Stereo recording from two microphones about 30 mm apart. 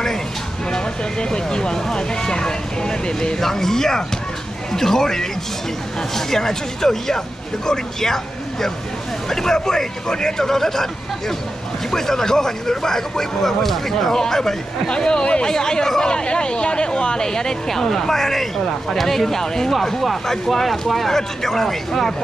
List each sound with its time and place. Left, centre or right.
0.7 s speech: left
3.3 s speech: centre
14.9 s speech: left
15.4 s speech: centre
19.7 s speech: centre